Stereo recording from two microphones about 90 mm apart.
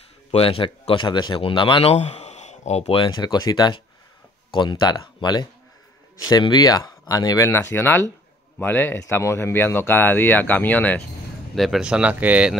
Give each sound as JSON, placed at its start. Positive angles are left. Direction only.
{"t": 0.3, "sound": "a man's voice", "side_deg": 90}
{"t": 2.9, "sound": "a man's voice", "side_deg": 75}
{"t": 3.2, "sound": "speech", "side_deg": 50}
{"t": 7.4, "sound": "speech", "side_deg": 25}
{"t": 11.5, "sound": "speech", "side_deg": 0}